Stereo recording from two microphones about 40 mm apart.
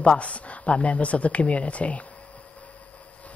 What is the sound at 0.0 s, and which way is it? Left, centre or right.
Speech, left.